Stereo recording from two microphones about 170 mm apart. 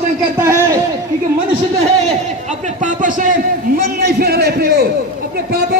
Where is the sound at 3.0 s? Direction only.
50° right (ahead or behind).